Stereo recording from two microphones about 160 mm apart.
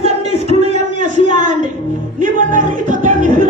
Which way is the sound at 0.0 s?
40° right (ahead or behind).